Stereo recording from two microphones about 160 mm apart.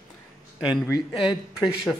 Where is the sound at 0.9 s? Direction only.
30° left (ahead or behind).